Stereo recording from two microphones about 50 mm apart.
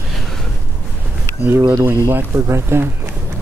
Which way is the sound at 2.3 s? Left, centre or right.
Right.